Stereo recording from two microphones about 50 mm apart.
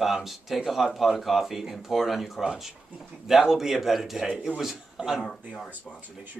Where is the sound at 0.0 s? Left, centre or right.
Centre.